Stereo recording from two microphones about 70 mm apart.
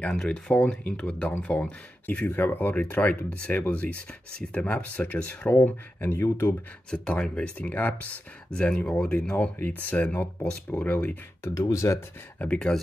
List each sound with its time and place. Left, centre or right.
0.0 s speech: centre; by 6.5 s left
6.9 s speech: centre
11.4 s speech: left
12.4 s speech: centre